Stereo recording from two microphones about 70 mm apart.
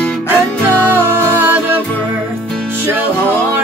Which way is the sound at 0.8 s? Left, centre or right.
Right.